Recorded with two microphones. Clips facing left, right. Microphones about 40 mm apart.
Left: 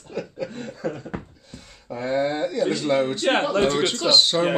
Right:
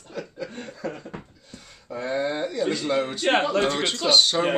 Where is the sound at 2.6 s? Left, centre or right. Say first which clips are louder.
Left 3 dB; centre.